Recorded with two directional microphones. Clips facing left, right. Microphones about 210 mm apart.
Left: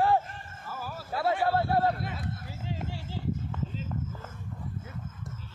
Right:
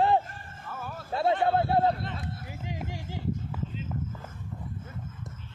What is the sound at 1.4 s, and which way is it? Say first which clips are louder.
Speech: right 1 dB; 20° right (ahead or behind).